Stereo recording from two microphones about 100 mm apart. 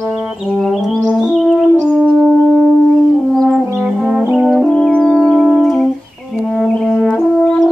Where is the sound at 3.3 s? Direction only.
Centre (ahead or behind).